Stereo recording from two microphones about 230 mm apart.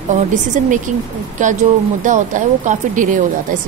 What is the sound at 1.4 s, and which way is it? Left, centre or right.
Speech, right.